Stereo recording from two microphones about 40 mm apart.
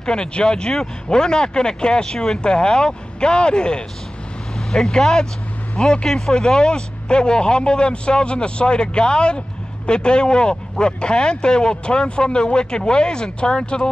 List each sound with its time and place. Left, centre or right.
0.0 s speech: left